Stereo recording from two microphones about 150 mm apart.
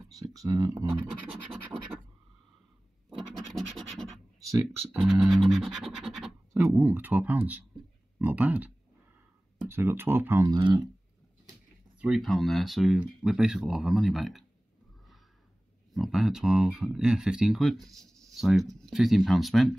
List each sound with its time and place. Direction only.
0.2 s speech: 20° right (ahead or behind)
3.2 s scratch: centre (ahead or behind)
4.9 s speech: centre (ahead or behind)
6.5 s speech: 20° right (ahead or behind)
12.0 s speech: centre (ahead or behind)
15.9 s speech: centre (ahead or behind)